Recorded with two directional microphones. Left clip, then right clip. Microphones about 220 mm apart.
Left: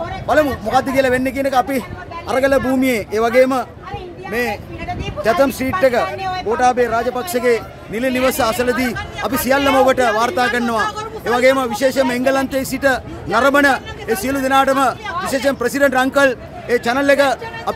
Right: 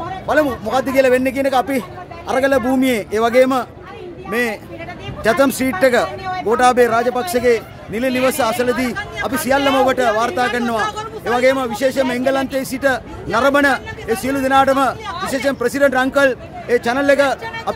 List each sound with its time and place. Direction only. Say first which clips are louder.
0.3 s a man's voice: left 2 dB; 10° right (ahead or behind); by 6.0 s 30° right (ahead or behind)
6.5 s a man's voice: right 3 dB; 45° right (ahead or behind); by 10.8 s centre (ahead or behind)
10.8 s speech: left 1 dB; 30° right (ahead or behind)
11.2 s speech: left 1 dB; centre (ahead or behind)